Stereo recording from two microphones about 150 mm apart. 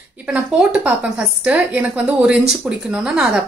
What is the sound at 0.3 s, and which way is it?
A woman's voice, 5° right (ahead or behind).